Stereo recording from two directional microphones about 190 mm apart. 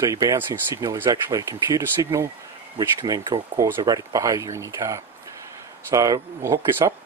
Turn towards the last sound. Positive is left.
turn(degrees=-20)  # may be behind; listen again after turning